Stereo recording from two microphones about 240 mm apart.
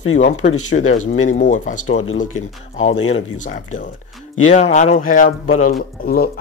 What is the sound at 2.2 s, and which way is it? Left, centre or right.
Speech, left.